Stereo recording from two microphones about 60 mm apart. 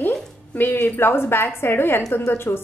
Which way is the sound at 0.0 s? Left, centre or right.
Left.